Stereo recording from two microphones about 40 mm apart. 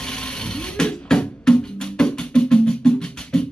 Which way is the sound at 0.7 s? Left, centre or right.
Centre.